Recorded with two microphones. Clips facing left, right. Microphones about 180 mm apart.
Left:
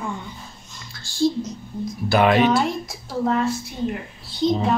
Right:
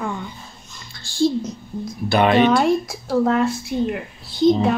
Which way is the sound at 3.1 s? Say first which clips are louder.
Right 4 dB; 60° right (ahead or behind).